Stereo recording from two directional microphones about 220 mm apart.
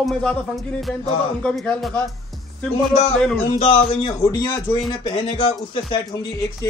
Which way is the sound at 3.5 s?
25° left (ahead or behind).